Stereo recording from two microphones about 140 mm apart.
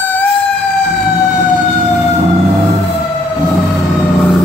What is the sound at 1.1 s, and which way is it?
Fire engine, 55° right (ahead or behind).